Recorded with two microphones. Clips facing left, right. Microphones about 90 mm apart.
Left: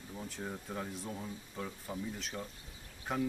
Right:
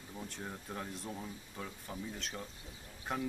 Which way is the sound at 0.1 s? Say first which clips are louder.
Left 2 dB; centre (ahead or behind).